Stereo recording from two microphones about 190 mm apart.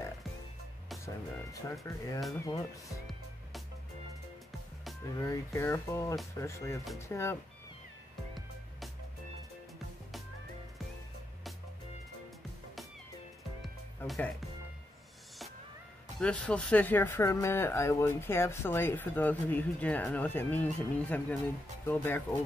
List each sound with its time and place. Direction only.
1.0 s speech: 15° left (ahead or behind)
2.1 s speech: centre (ahead or behind)
5.2 s speech: 15° left (ahead or behind)
8.4 s music: centre (ahead or behind)
14.0 s speech: centre (ahead or behind)
16.2 s speech: 5° left (ahead or behind)